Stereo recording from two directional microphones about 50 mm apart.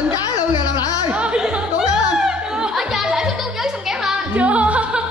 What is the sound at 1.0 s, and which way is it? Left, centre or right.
Music, right.